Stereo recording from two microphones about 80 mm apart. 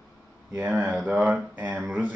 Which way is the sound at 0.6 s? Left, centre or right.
Centre.